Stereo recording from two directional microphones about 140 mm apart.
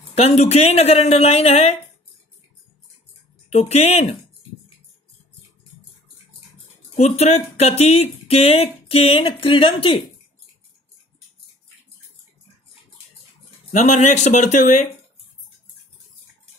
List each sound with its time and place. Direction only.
0.1 s speech: 45° left (ahead or behind)
3.5 s speech: 50° left (ahead or behind)
7.0 s speech: 50° left (ahead or behind)
13.7 s speech: 55° left (ahead or behind)